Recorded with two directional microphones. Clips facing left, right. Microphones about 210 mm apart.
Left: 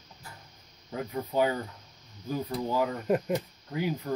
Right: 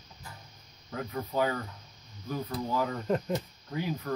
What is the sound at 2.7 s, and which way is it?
Speech, 15° left (ahead or behind).